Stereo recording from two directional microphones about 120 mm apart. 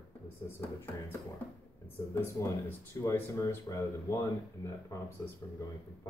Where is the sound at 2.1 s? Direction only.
20° left (ahead or behind).